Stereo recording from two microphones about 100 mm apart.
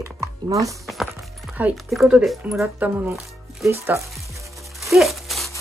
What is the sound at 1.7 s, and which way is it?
Speech, centre (ahead or behind).